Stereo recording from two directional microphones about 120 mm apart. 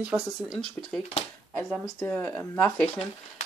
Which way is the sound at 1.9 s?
15° left (ahead or behind).